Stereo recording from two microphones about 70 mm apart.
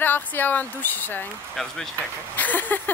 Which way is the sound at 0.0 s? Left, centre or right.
Left.